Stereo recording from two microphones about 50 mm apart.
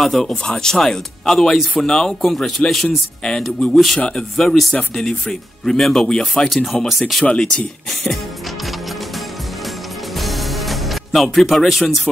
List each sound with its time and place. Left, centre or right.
0.0 s speech: centre
3.7 s speech: centre
6.0 s speech: centre
6.5 s speech: centre
10.1 s music: centre
11.3 s speech: centre